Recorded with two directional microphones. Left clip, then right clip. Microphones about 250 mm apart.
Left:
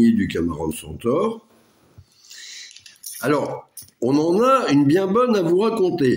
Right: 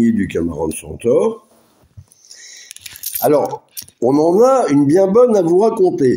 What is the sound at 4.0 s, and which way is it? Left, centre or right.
Speech, centre.